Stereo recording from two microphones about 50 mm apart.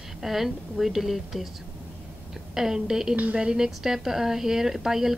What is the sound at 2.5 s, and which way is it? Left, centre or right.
Speech, centre.